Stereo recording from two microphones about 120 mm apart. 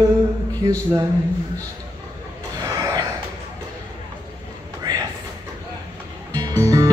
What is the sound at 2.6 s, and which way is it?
Gasp, 30° right (ahead or behind).